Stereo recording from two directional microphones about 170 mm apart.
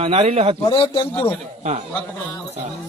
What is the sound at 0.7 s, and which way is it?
Speech, 30° left (ahead or behind).